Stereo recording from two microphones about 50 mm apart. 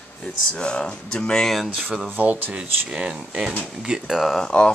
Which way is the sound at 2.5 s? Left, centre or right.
Centre.